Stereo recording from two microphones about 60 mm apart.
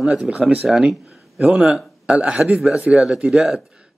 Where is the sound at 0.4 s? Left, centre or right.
Right.